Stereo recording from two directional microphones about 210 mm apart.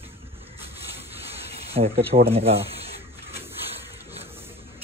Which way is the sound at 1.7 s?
30° right (ahead or behind).